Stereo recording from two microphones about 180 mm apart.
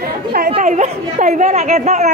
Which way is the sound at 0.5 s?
40° right (ahead or behind).